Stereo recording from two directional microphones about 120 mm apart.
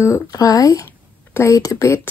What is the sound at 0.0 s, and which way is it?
Speech, 30° left (ahead or behind).